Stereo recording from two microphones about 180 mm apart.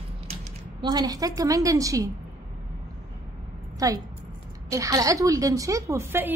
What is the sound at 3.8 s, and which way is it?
A woman's voice, 20° right (ahead or behind).